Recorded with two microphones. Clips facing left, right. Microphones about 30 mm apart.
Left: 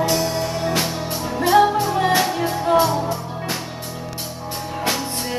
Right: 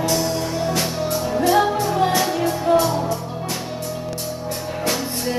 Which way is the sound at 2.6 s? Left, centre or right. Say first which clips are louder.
Left 1 dB; centre.